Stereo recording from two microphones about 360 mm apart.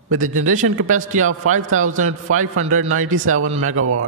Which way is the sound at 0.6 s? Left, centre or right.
Right.